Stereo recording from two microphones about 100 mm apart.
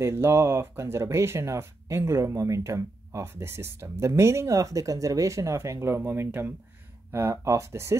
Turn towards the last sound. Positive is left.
turn(degrees=-25)  # may be behind; listen again after turning